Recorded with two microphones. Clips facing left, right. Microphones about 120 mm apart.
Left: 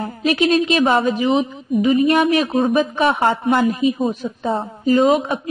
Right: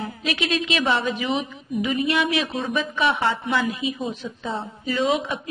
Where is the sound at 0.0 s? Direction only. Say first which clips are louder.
Left 9 dB; 40° left (ahead or behind).